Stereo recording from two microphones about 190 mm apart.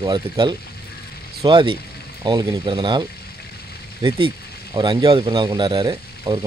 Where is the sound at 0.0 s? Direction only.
20° right (ahead or behind).